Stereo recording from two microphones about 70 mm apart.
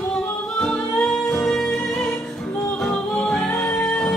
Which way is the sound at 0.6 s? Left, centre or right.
Centre.